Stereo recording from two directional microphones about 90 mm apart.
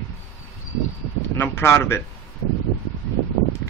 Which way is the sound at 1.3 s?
25° left (ahead or behind).